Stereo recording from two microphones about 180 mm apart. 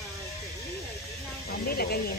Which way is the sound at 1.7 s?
60° left (ahead or behind).